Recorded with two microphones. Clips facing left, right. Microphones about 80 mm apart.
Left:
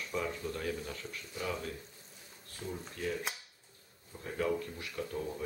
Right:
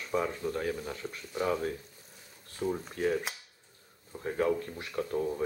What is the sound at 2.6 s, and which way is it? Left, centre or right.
Speech, right.